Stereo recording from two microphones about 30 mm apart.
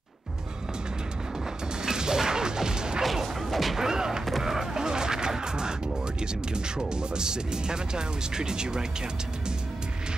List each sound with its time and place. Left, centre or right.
1.9 s bow-wow: right
3.4 s a sound: centre
3.7 s a sound: right
4.4 s vehicle: centre
4.8 s music: right
6.5 s speech: right